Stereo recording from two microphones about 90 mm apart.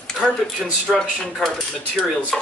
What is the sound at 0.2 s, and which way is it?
Speech, 5° left (ahead or behind).